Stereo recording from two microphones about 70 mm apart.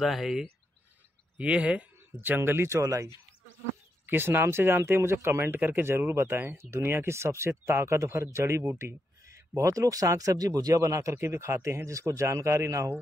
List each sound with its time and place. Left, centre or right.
0.0 s speech: centre
1.4 s speech: centre; by 3.1 s right
4.0 s speech: right